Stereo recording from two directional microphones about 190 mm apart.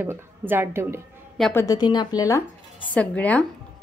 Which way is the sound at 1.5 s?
20° left (ahead or behind).